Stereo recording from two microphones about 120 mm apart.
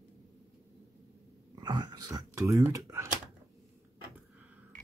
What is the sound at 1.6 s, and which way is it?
Typing, 35° right (ahead or behind).